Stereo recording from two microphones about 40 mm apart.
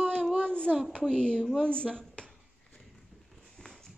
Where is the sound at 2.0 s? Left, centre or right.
Centre.